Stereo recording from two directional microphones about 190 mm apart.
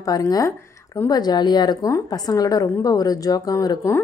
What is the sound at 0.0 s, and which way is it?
Speech, 20° left (ahead or behind).